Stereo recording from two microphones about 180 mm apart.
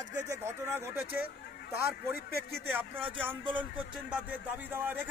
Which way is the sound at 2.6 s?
10° right (ahead or behind).